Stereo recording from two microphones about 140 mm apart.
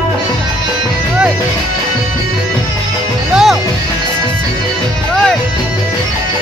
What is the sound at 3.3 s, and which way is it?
Music, 5° right (ahead or behind).